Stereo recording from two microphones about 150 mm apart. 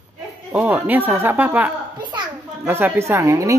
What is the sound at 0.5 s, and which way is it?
Speech, 10° right (ahead or behind).